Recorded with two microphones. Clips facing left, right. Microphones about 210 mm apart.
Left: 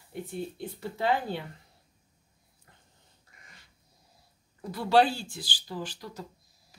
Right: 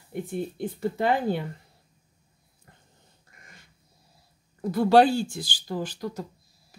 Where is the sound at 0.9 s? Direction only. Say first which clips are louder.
Right 3 dB; 50° right (ahead or behind).